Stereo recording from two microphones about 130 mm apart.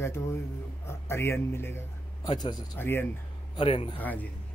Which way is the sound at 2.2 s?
35° left (ahead or behind).